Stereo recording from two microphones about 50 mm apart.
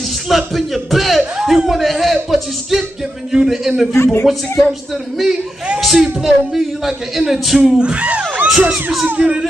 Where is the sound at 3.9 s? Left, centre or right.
Left.